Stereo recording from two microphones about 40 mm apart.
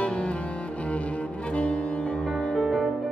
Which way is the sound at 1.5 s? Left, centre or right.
Left.